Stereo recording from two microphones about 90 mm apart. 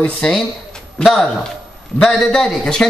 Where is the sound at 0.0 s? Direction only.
5° left (ahead or behind).